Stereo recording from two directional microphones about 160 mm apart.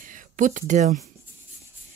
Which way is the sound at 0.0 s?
55° right (ahead or behind).